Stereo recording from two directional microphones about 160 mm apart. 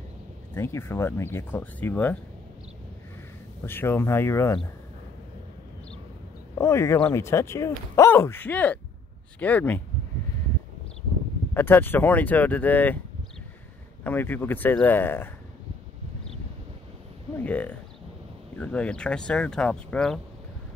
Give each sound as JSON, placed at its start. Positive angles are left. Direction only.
{"t": 0.6, "sound": "speech", "side_deg": 15}
{"t": 3.6, "sound": "speech", "side_deg": 15}
{"t": 6.6, "sound": "speech", "side_deg": 15}
{"t": 11.5, "sound": "speech", "side_deg": 15}
{"t": 14.0, "sound": "speech", "side_deg": 10}
{"t": 17.4, "sound": "speech", "side_deg": 10}